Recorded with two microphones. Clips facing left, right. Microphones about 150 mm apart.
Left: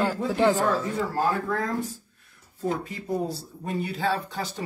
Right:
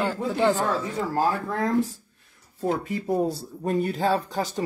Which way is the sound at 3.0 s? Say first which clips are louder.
Right 3 dB; 55° right (ahead or behind).